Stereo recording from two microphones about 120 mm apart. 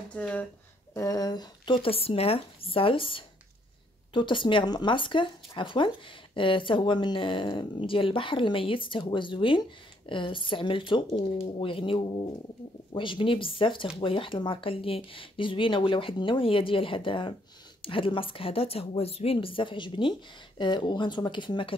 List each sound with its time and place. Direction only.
0.1 s speech: 10° left (ahead or behind)
0.9 s speech: 30° left (ahead or behind)
1.8 s speech: 55° left (ahead or behind)